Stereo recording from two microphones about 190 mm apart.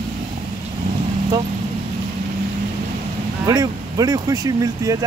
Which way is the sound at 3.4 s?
20° right (ahead or behind).